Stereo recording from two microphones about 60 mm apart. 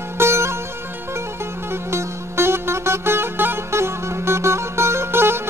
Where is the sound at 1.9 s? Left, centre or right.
Right.